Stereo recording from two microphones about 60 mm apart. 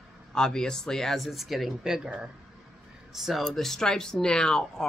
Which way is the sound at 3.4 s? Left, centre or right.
Centre.